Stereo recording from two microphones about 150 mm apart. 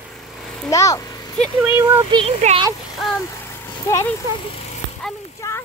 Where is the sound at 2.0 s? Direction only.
30° right (ahead or behind).